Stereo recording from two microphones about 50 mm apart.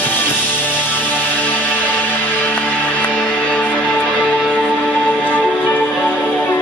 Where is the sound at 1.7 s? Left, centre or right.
Left.